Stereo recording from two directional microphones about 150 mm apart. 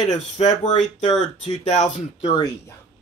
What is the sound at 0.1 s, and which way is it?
Speech, 50° left (ahead or behind).